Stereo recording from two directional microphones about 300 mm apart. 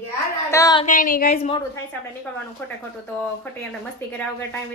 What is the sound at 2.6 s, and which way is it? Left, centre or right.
Speech, centre.